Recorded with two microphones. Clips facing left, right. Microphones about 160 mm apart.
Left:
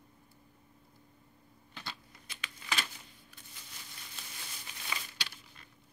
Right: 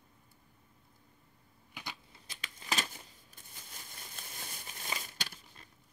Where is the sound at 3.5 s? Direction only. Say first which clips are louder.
Right 2 dB; 45° right (ahead or behind).